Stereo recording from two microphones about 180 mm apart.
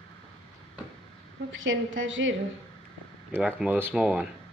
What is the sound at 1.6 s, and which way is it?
Speech, 90° right.